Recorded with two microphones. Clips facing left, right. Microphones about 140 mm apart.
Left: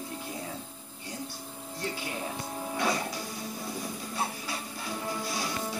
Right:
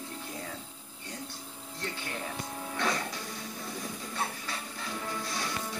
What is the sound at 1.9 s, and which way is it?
Speech, 10° left (ahead or behind).